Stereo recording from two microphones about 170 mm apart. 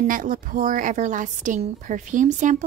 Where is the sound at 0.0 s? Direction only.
50° right (ahead or behind).